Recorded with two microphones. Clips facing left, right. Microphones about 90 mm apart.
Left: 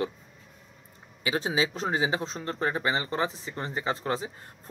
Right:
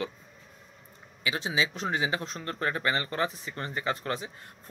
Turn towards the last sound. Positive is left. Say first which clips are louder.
# left 2 dB
turn(degrees=30)  # may be behind; listen again after turning